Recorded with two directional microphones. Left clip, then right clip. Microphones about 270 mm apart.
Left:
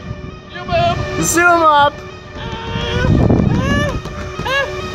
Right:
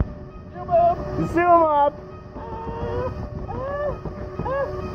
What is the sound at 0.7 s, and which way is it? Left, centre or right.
Speech, left.